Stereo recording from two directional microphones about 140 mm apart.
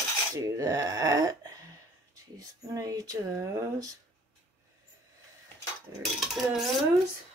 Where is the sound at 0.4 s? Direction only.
25° right (ahead or behind).